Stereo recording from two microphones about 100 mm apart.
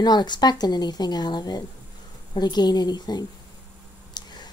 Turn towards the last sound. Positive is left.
turn(degrees=45)  # may be behind; listen again after turning